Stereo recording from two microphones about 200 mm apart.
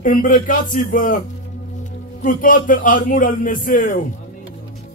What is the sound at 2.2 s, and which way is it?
A man's voice, 40° left (ahead or behind).